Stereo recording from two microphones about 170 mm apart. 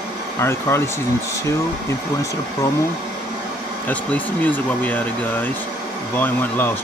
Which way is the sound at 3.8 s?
10° left (ahead or behind).